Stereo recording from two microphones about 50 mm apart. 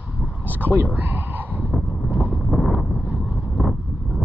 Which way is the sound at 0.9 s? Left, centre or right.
Right.